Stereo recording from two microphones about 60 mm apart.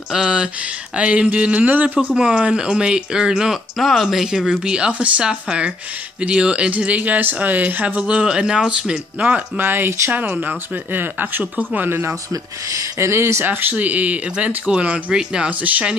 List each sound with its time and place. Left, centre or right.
0.1 s speech: centre
2.0 s speech: centre
8.1 s speech: centre
9.6 s speech: right
10.1 s speech: right
13.0 s speech: right; by 16.0 s centre